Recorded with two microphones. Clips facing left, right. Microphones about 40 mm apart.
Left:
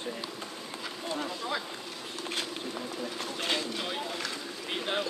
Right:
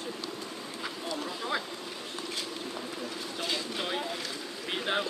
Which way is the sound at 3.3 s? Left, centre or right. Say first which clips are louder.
Left 2 dB; left.